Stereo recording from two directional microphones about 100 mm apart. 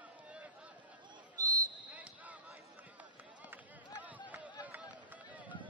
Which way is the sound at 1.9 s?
15° right (ahead or behind).